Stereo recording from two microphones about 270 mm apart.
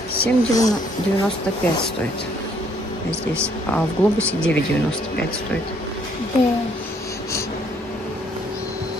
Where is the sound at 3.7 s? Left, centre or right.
Centre.